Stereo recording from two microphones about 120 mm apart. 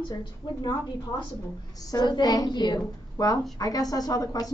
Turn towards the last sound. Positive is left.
turn(degrees=30)  # may be behind; listen again after turning